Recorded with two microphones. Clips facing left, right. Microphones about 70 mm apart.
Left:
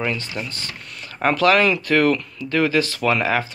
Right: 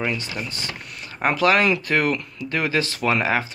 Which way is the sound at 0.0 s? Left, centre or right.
Centre.